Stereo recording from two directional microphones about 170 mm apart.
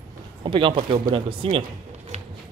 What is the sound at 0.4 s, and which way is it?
Speech, 30° right (ahead or behind).